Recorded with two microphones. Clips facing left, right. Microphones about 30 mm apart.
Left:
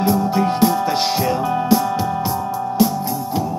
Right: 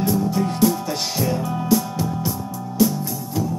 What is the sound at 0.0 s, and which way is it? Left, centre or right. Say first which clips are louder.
Music: left 4 dB; left.